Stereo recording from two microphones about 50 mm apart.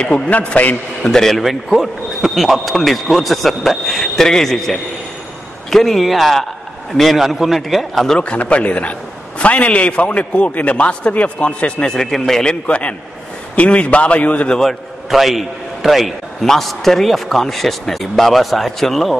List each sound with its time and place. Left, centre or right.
0.0 s a man's voice: left
1.0 s speech: centre
1.4 s a man's voice: centre
8.2 s a man's voice: left
11.9 s speech: centre
12.4 s a man's voice: left
14.6 s a man's voice: centre